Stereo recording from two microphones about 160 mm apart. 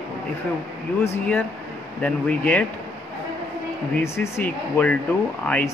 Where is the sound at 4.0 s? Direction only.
15° left (ahead or behind).